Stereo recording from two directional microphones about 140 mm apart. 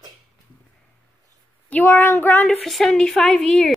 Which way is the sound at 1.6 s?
10° left (ahead or behind).